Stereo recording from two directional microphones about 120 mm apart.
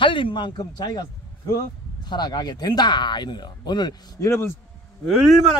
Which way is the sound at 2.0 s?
35° left (ahead or behind).